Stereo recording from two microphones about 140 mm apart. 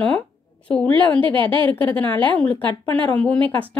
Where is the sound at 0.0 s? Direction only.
10° left (ahead or behind).